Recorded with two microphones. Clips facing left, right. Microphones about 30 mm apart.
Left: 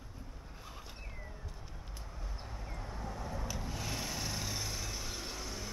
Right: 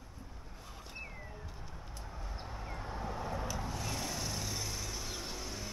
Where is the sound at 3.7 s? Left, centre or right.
Centre.